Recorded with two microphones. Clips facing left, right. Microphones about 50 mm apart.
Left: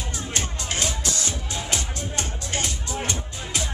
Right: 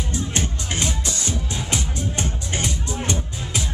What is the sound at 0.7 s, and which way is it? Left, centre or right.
Music, right.